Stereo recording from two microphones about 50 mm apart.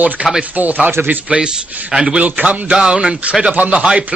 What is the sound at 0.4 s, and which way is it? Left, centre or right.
Speech, right.